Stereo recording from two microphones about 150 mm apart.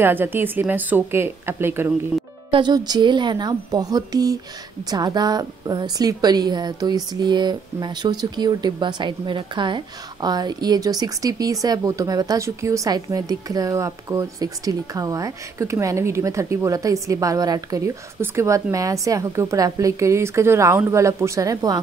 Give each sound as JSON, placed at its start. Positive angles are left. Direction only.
{"t": 0.0, "sound": "speech", "side_deg": -15}
{"t": 2.5, "sound": "a woman's voice", "side_deg": -30}